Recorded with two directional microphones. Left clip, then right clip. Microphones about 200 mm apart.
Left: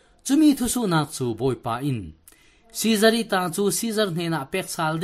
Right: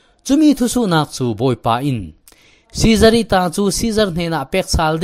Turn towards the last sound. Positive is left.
turn(degrees=-35)  # may be behind; listen again after turning